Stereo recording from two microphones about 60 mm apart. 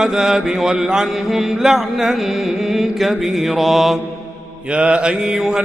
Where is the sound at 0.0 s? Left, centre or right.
Centre.